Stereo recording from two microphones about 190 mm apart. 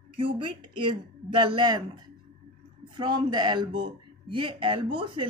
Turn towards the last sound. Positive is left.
turn(degrees=-25)  # may be behind; listen again after turning